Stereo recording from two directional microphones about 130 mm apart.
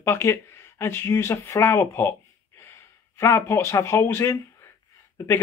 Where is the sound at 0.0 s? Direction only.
20° left (ahead or behind).